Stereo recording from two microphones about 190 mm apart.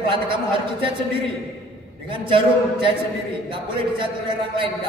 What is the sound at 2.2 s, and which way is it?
Speech, 25° right (ahead or behind).